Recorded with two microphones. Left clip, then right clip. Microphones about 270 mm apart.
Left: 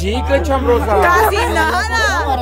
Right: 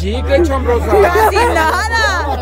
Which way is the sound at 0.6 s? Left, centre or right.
Centre.